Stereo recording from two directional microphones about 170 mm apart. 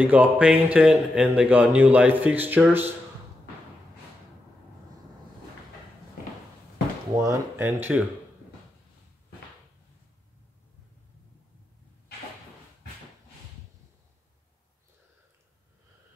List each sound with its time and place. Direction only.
0.0 s speech: 10° right (ahead or behind)
7.2 s speech: 15° right (ahead or behind)